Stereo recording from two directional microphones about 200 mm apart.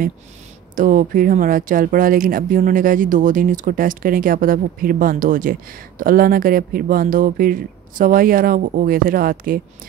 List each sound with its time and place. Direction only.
0.7 s speech: 40° right (ahead or behind)